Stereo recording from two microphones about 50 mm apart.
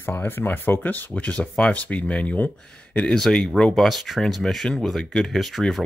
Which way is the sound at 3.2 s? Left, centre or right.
Centre.